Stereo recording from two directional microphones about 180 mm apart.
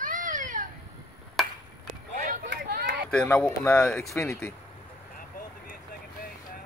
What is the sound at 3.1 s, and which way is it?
Speech, 5° left (ahead or behind).